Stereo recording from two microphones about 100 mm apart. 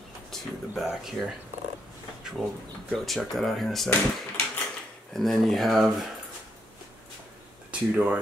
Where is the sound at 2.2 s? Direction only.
5° right (ahead or behind).